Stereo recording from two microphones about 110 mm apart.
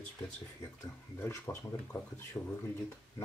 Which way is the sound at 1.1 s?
25° left (ahead or behind).